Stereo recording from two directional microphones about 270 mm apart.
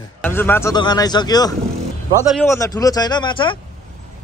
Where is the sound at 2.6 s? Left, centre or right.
Centre.